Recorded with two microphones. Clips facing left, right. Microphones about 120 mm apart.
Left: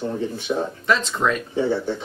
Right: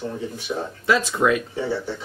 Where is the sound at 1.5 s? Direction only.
20° left (ahead or behind).